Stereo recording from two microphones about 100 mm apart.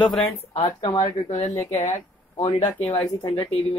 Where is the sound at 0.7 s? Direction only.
40° left (ahead or behind).